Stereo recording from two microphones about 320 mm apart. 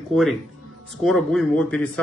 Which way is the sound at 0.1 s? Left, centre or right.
Centre.